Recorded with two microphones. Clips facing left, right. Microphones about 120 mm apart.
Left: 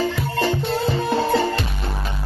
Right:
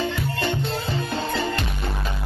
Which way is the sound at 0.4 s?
35° left (ahead or behind).